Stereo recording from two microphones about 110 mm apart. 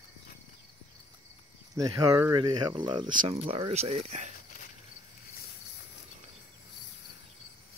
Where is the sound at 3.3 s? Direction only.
60° right (ahead or behind); by 4.3 s 80° right.